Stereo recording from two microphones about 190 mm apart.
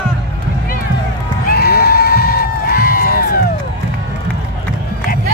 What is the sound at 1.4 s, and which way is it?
Crowd, 55° left (ahead or behind).